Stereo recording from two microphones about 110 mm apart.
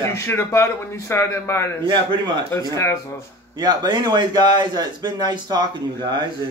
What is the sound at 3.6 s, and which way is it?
Speech, 35° right (ahead or behind).